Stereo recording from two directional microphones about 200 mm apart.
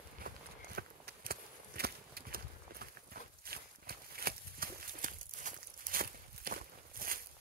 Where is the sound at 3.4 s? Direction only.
50° right (ahead or behind).